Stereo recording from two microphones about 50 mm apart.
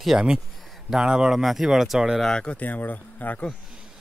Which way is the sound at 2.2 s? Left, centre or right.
Centre.